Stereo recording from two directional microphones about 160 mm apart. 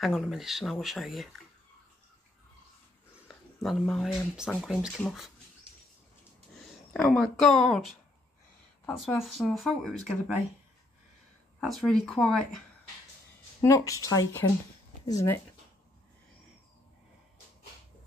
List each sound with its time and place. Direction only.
0.0 s speech: centre (ahead or behind)
3.3 s speech: centre (ahead or behind)
6.6 s speech: centre (ahead or behind)
11.6 s speech: centre (ahead or behind)
13.6 s speech: 20° left (ahead or behind)